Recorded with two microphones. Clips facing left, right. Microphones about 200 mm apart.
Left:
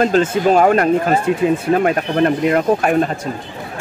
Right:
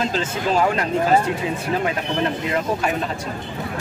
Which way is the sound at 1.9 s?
55° left (ahead or behind).